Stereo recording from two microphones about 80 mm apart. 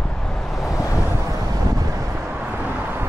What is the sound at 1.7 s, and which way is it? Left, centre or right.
Wind noise, right.